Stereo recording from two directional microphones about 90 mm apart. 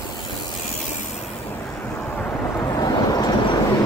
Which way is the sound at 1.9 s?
5° left (ahead or behind).